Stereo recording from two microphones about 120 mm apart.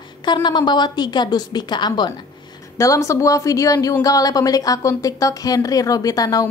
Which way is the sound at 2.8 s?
25° left (ahead or behind).